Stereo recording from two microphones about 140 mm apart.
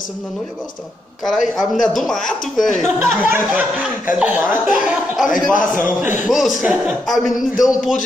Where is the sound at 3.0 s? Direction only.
15° right (ahead or behind).